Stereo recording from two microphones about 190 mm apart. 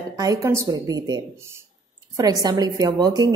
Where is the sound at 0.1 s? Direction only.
20° right (ahead or behind).